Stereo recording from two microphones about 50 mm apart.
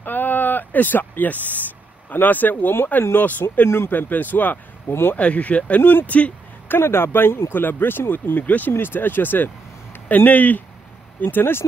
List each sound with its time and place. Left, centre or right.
0.0 s a sound: left
2.0 s speech: left
3.6 s speech: left
3.9 s speech: left
4.8 s speech: left
5.1 s speech: left
5.8 s speech: left
6.0 s speech: left
6.7 s speech: left
7.5 s speech: left
8.7 s speech: left